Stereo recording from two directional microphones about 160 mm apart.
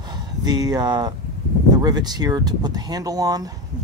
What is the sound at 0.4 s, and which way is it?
Speech, 25° right (ahead or behind).